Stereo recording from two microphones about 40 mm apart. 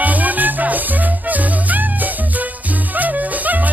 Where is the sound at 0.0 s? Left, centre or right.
Right.